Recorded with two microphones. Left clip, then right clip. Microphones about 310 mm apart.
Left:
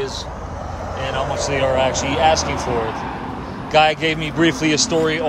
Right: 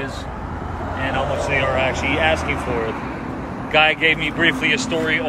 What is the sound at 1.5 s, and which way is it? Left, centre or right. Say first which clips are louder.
Speech: left 3 dB; centre.